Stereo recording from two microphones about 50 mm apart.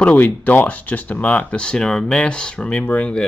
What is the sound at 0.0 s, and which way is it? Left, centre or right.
Speech, left.